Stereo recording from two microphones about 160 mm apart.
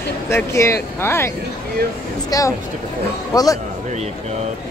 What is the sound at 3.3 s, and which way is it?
Speech, 20° left (ahead or behind).